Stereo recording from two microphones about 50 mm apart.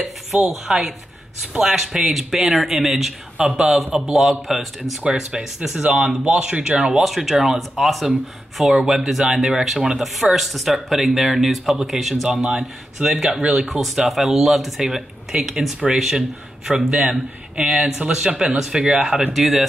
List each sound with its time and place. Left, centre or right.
0.0 s dishes: centre
1.5 s speech: centre
3.3 s a man's voice: centre
4.1 s a man's voice: centre
6.8 s a man's voice: centre